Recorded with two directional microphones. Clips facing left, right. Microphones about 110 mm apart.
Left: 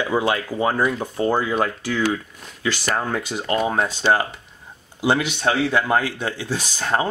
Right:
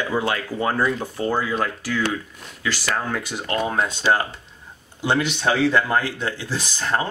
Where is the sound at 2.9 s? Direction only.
30° left (ahead or behind).